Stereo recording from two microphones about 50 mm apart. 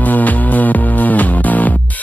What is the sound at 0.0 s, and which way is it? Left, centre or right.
Music, left.